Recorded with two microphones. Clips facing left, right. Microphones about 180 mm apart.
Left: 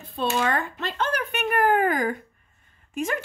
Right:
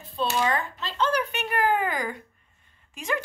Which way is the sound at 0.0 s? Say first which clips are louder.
Left 1 dB; 55° left (ahead or behind).